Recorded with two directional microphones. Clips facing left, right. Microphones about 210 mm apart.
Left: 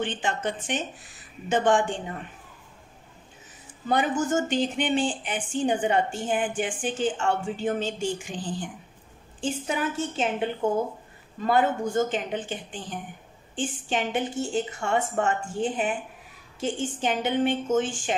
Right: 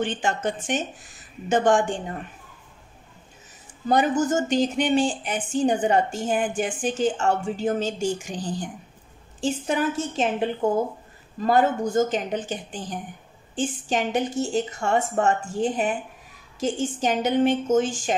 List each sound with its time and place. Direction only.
0.0 s speech: 45° right (ahead or behind)
3.8 s speech: 40° right (ahead or behind)
11.4 s speech: 40° right (ahead or behind)